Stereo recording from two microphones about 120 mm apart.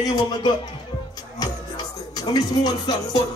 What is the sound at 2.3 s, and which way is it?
Music, 35° left (ahead or behind).